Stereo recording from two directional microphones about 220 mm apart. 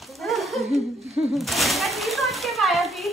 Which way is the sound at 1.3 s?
Centre (ahead or behind).